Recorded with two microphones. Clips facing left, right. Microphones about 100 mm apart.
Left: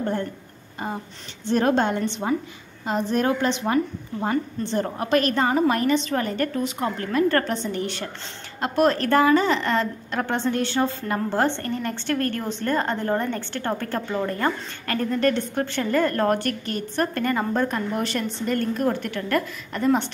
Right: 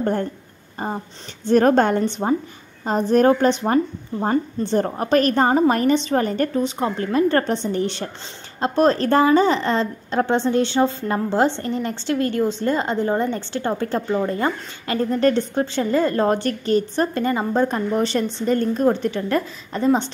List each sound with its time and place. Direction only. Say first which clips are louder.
1.5 s a woman's voice: right 5 dB; 45° right (ahead or behind)
15.6 s a woman's voice: right 1 dB; 20° right (ahead or behind)